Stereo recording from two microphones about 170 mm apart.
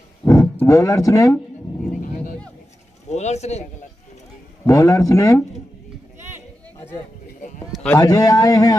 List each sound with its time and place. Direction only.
0.2 s speech: 15° left (ahead or behind)
2.0 s a sound: 50° left (ahead or behind)
3.1 s speech: 40° left (ahead or behind)
4.6 s a man's voice: 20° left (ahead or behind)
7.7 s a sound: 5° left (ahead or behind)
8.0 s a man's voice: 20° left (ahead or behind)